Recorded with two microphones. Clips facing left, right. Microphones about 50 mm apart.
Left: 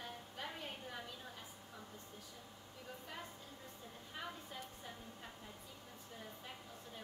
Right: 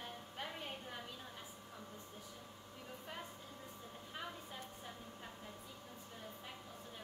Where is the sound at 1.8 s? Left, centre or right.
Right.